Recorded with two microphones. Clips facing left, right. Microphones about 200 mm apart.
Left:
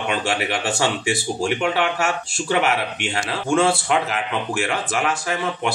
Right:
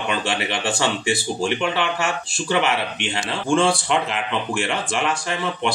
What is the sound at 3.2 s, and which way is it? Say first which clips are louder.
Speech: even; 5° left (ahead or behind).